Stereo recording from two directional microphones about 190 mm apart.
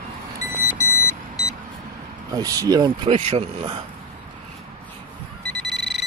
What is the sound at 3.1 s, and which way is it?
Speech, 30° right (ahead or behind).